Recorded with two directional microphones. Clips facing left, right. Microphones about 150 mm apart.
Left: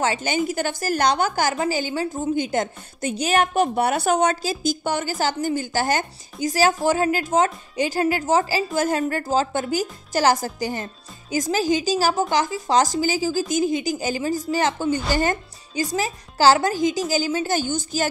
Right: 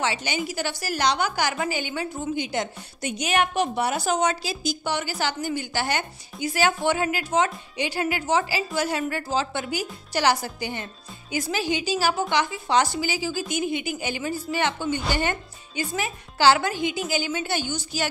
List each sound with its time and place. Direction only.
0.0 s a woman's voice: 45° left (ahead or behind)
3.1 s a woman's voice: 35° left (ahead or behind)